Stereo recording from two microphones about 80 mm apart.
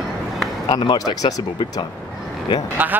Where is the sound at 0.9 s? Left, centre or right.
Left.